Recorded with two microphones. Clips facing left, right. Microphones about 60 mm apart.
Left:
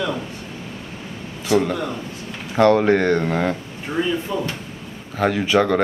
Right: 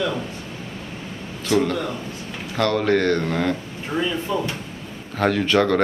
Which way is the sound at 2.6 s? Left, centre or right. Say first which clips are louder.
Left 5 dB; left.